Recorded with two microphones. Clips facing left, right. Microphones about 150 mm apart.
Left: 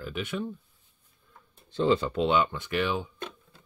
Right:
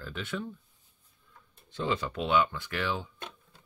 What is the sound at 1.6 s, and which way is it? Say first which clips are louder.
Speech: left 7 dB; 30° left (ahead or behind).